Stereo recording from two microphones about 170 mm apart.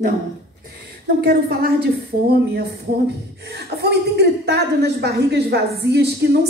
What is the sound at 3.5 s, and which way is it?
A woman's voice, 75° right (ahead or behind).